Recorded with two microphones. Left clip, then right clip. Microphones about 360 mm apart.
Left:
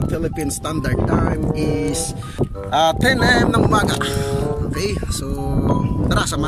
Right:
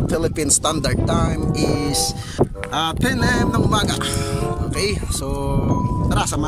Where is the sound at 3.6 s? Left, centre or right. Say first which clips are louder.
Left 3 dB; centre.